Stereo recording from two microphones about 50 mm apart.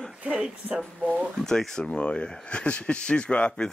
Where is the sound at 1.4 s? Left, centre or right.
Centre.